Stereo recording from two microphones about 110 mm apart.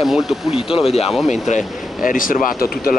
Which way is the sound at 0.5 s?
60° left (ahead or behind).